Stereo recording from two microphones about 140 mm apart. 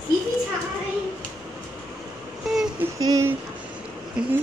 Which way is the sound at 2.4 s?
5° right (ahead or behind).